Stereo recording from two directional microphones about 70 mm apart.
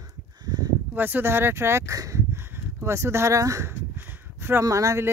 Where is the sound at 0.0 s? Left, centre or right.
Right.